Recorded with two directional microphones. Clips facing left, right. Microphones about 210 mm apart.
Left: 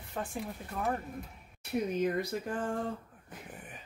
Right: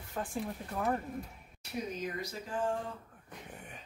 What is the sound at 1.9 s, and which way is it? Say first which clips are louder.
Speech: left 8 dB; 55° left (ahead or behind).